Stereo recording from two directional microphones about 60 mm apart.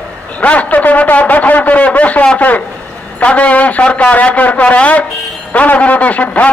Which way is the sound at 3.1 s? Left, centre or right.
Left.